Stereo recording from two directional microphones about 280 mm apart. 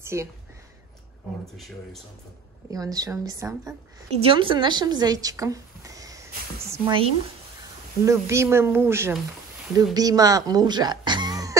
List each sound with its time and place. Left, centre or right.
0.0 s speech: centre
1.4 s speech: centre
2.7 s speech: centre